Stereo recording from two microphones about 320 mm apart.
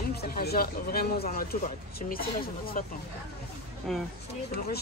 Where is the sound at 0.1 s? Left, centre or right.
Left.